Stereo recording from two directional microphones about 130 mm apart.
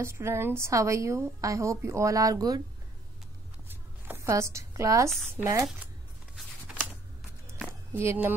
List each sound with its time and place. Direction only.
0.0 s a woman's voice: 20° right (ahead or behind)
3.6 s zipper: 15° right (ahead or behind)
5.2 s a woman's voice: 20° right (ahead or behind)
8.0 s speech: 15° right (ahead or behind)